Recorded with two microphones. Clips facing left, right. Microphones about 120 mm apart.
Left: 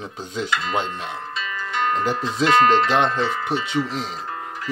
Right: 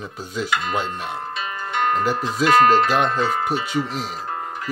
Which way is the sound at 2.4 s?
25° left (ahead or behind).